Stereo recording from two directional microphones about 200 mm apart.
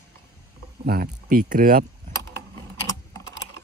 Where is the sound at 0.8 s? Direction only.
50° right (ahead or behind).